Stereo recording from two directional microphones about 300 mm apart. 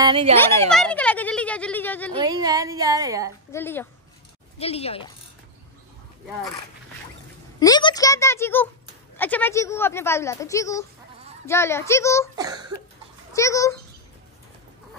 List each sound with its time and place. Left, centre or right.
0.0 s a woman's voice: centre
0.4 s speech: centre
2.2 s a woman's voice: centre
3.5 s speech: centre
4.6 s speech: centre
7.6 s speech: centre
12.4 s a woman's voice: centre
13.3 s speech: centre